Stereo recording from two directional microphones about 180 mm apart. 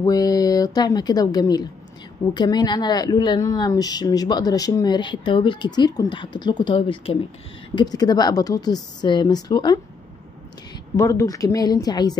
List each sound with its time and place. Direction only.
0.0 s speech: 20° left (ahead or behind)
11.0 s speech: 15° left (ahead or behind)